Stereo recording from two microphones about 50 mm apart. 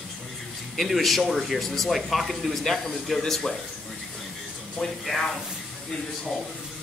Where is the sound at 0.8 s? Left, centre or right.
Centre.